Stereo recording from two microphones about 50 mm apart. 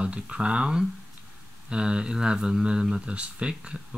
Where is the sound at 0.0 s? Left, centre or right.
Right.